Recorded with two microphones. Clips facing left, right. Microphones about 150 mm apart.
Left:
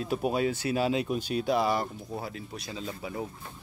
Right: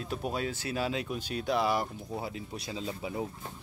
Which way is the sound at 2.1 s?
15° right (ahead or behind).